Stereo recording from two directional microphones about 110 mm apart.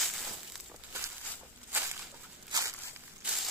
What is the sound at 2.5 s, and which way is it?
Walk, 35° right (ahead or behind).